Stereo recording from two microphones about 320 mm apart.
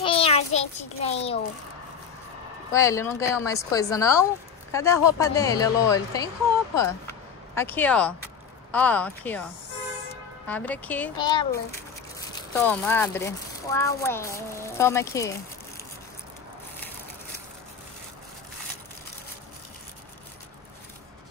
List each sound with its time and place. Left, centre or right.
0.0 s child singing: centre
0.7 s a child's voice: centre
2.7 s speech: centre